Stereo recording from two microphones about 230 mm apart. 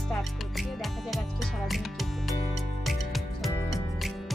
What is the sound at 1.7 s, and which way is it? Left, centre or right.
Music, centre.